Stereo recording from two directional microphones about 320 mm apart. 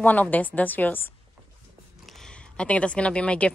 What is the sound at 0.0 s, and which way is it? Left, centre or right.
A woman's voice, centre.